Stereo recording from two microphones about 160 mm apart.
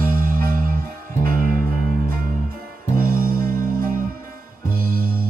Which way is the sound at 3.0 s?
65° right (ahead or behind).